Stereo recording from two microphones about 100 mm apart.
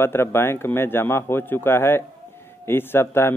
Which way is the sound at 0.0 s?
25° left (ahead or behind).